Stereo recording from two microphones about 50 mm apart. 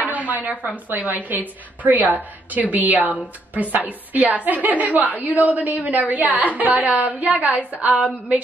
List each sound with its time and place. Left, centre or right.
0.0 s a woman's voice: right